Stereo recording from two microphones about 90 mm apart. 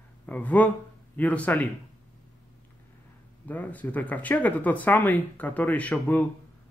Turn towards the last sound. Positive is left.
turn(degrees=15)  # may be behind; listen again after turning